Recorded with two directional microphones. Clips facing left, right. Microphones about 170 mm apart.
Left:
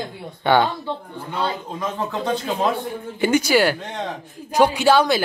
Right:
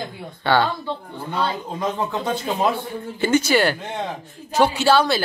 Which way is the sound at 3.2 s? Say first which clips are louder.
Left 1 dB; 10° left (ahead or behind).